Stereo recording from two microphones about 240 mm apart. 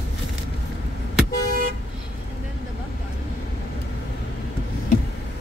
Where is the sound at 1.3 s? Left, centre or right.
Left.